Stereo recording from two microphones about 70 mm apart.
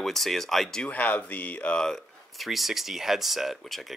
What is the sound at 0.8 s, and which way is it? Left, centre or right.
Speech, left.